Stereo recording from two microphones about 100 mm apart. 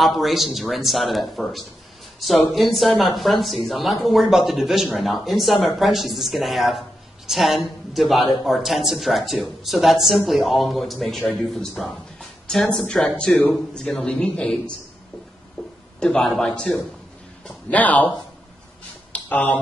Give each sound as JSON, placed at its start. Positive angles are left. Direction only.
{"t": 0.0, "sound": "a woman's voice", "side_deg": 0}
{"t": 16.0, "sound": "a woman's voice", "side_deg": 5}
{"t": 17.5, "sound": "speech", "side_deg": 15}
{"t": 19.1, "sound": "speech", "side_deg": 15}